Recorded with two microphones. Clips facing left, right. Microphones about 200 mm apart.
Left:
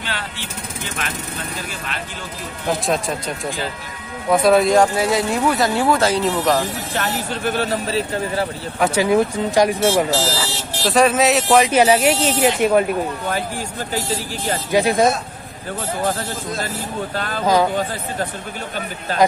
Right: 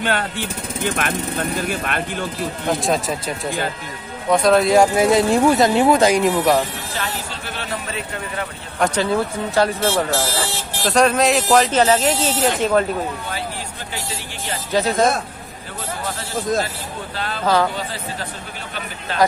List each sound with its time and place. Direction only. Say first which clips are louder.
0.0 s speech: right 7 dB; 50° right (ahead or behind)
2.8 s speech: right 1 dB; centre (ahead or behind)
4.8 s speech: right 3 dB; 20° right (ahead or behind)
6.9 s speech: left 4 dB; 50° left (ahead or behind); by 8.5 s 35° left (ahead or behind)
8.7 s speech: left 3 dB; 5° left (ahead or behind)
10.2 s buzzer: left 1 dB; 50° right (ahead or behind)
10.9 s speech: left 1 dB; 5° left (ahead or behind)
13.9 s speech: left 7 dB; 40° left (ahead or behind)
14.7 s speech: left 2 dB; 10° left (ahead or behind)
17.1 s speech: left 2 dB; 45° left (ahead or behind)